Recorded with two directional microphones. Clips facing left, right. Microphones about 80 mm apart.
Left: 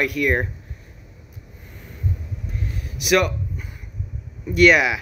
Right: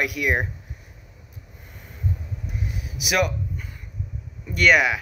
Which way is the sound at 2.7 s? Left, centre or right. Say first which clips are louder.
Left 8 dB; centre.